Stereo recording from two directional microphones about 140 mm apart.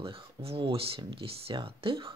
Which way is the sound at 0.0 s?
40° right (ahead or behind).